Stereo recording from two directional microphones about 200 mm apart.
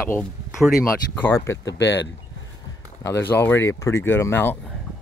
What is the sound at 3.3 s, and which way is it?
Speech, 10° left (ahead or behind).